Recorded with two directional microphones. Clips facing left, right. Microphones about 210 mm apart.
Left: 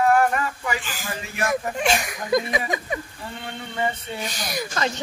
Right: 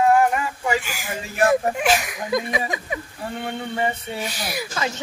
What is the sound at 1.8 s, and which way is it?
Speech, 5° right (ahead or behind).